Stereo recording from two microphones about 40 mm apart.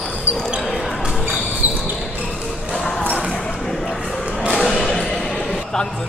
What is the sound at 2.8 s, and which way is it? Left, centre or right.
Basketball bounce, centre.